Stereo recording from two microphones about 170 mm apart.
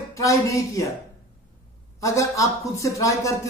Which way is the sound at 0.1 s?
20° left (ahead or behind).